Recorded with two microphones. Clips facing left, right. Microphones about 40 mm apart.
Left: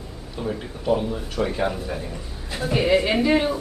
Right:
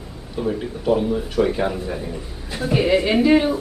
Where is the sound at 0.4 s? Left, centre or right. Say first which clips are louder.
Right 5 dB; centre.